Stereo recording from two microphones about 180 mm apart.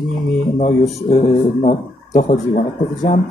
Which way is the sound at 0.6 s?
35° left (ahead or behind).